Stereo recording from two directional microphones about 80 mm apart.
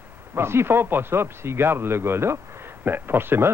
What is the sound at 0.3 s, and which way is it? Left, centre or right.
Speech, right.